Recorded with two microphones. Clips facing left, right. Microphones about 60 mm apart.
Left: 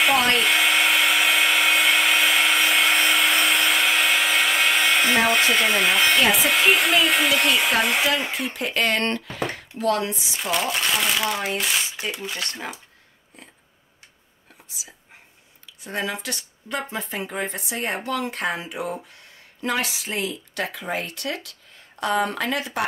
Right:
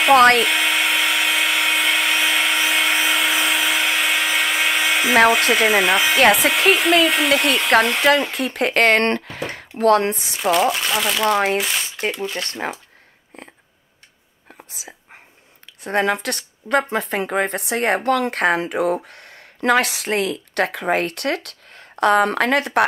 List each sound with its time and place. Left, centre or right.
0.1 s hair dryer: right
0.4 s hair dryer: centre
5.3 s speech: centre
8.3 s speech: right
10.7 s speech: centre
11.2 s speech: right
11.5 s speech: centre
14.7 s speech: right